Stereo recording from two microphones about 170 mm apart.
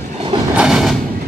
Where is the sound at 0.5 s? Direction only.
5° right (ahead or behind).